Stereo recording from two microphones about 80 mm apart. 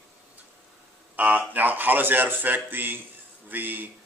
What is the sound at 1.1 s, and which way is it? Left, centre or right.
A man's voice, centre.